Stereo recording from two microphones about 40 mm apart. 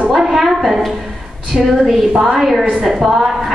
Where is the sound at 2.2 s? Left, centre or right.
Centre.